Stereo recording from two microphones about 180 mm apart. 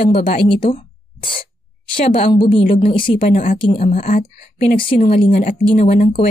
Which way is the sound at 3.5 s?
30° left (ahead or behind).